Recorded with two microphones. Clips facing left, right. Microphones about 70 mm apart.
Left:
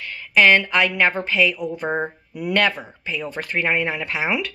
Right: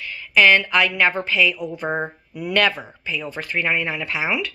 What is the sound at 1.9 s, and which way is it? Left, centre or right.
Speech, centre.